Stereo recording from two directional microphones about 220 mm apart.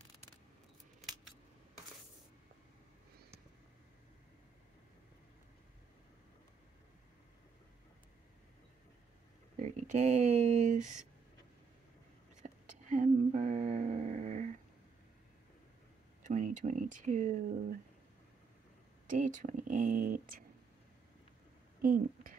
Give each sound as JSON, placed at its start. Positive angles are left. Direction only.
{"t": 9.6, "sound": "speech", "side_deg": -30}
{"t": 12.4, "sound": "a sound", "side_deg": -35}
{"t": 16.2, "sound": "speech", "side_deg": -35}
{"t": 19.0, "sound": "speech", "side_deg": -35}
{"t": 21.8, "sound": "a woman's voice", "side_deg": -40}